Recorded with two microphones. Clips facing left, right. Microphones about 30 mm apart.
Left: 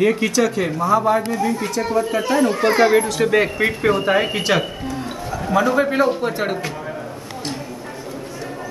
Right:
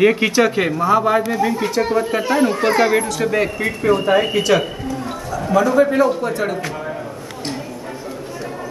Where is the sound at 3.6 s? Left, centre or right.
Left.